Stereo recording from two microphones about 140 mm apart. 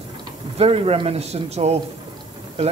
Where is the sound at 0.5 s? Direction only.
45° right (ahead or behind).